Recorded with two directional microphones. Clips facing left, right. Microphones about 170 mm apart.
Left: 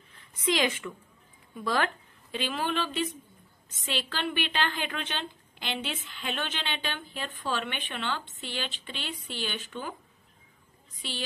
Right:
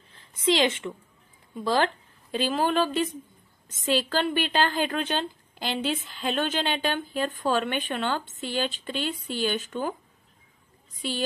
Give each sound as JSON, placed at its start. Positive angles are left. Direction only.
{"t": 0.1, "sound": "a woman's voice", "side_deg": -30}
{"t": 11.0, "sound": "speech", "side_deg": -45}